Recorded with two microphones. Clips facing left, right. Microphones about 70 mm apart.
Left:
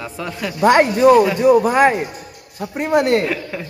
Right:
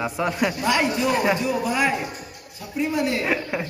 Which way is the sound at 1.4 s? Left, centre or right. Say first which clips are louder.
Left 10 dB; left.